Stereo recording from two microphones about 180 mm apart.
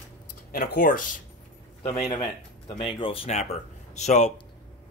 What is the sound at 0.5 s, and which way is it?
Speech, 55° left (ahead or behind).